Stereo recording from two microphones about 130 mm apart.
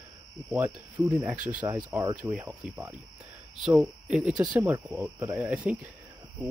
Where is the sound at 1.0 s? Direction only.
15° right (ahead or behind).